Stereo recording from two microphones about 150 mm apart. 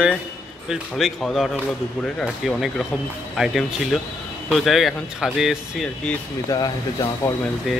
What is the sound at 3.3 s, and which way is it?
Speech, centre (ahead or behind).